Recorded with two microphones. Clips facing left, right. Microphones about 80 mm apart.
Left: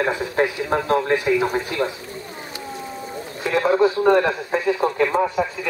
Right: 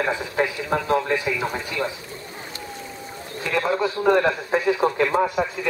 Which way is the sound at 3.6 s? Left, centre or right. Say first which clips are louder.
Left 7 dB; centre.